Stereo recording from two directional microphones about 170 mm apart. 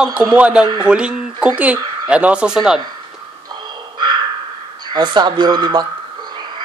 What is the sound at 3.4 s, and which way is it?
Crow, 25° right (ahead or behind).